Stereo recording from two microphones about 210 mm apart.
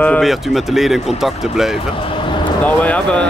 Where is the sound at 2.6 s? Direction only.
5° left (ahead or behind).